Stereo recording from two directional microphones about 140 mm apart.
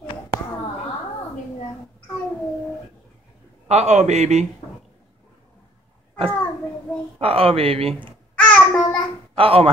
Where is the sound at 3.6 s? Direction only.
55° right (ahead or behind).